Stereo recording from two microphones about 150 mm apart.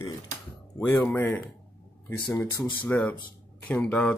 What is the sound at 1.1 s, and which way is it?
Speech, 10° left (ahead or behind).